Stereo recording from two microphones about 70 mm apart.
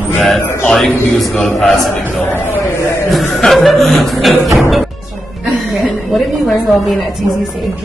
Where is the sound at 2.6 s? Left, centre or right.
Left.